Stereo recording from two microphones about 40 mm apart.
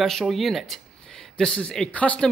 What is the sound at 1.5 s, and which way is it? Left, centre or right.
Speech, left.